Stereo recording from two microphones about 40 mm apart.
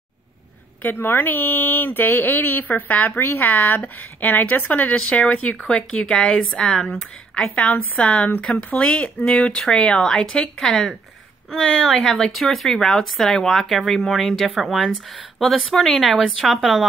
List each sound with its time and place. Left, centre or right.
0.9 s a woman's voice: left
5.9 s speech: left
6.8 s speech: centre
8.0 s speech: left; by 14.5 s centre
14.5 s a woman's voice: centre